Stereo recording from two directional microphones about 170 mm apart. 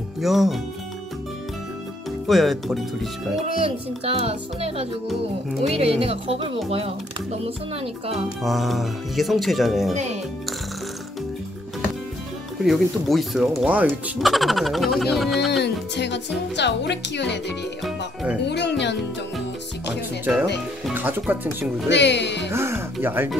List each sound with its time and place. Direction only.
0.2 s speech: centre (ahead or behind)
2.2 s speech: centre (ahead or behind)
3.6 s speech: 35° right (ahead or behind)
8.4 s speech: centre (ahead or behind)
12.6 s speech: centre (ahead or behind)
15.6 s speech: 90° left
17.8 s speech: 5° right (ahead or behind)
18.5 s speech: 90° left
20.9 s speech: 10° right (ahead or behind)
21.8 s speech: 90° left
22.5 s speech: 15° right (ahead or behind)